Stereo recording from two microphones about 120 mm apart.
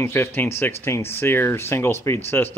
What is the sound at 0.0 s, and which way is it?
Speech, 20° left (ahead or behind).